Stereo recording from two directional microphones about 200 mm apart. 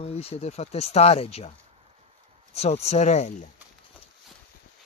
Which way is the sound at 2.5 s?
30° left (ahead or behind).